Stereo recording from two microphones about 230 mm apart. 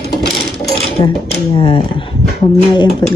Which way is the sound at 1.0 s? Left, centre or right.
Left.